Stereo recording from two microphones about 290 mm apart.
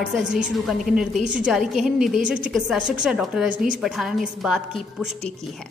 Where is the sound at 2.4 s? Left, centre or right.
Centre.